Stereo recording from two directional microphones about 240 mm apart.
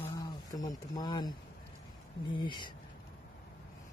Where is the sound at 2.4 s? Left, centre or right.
Centre.